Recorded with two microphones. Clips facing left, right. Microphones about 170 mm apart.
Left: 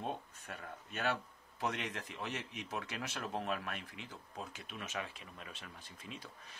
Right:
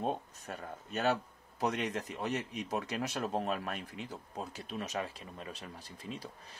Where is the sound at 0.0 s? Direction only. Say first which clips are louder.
Right 6 dB; 40° right (ahead or behind).